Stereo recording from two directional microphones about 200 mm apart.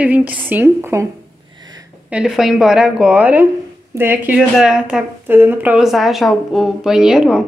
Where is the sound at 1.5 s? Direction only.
20° right (ahead or behind).